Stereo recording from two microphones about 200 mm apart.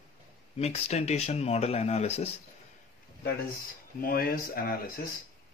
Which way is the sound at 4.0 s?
50° left (ahead or behind).